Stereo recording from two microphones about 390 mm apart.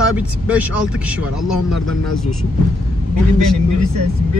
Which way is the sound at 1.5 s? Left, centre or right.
Left.